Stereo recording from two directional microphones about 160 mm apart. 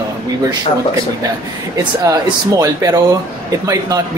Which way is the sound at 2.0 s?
20° right (ahead or behind).